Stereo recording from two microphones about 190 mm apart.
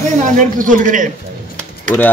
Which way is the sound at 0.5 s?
45° right (ahead or behind).